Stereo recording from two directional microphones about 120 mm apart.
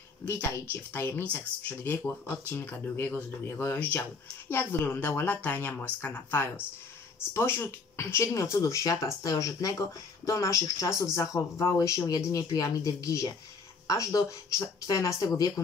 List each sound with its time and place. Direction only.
0.3 s speech: 20° left (ahead or behind)